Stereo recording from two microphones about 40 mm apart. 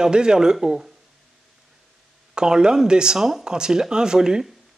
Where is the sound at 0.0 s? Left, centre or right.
Centre.